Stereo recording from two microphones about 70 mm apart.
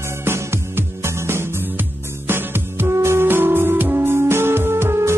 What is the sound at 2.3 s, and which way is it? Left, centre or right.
Music, right.